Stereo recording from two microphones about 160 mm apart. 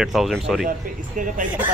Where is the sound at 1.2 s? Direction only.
55° right (ahead or behind).